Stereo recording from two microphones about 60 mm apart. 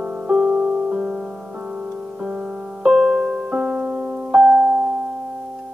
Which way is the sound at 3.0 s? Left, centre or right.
Centre.